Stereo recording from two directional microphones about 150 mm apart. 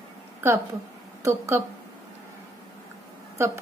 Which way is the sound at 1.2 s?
20° right (ahead or behind).